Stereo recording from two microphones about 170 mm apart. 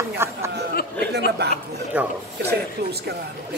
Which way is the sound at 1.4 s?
80° right.